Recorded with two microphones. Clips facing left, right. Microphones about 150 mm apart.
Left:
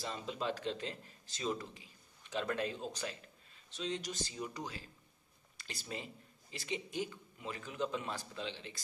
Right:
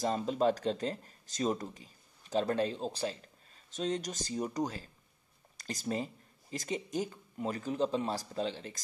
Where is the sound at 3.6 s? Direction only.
45° right (ahead or behind).